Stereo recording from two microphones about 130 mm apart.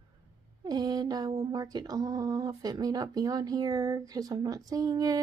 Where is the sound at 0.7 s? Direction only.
30° right (ahead or behind).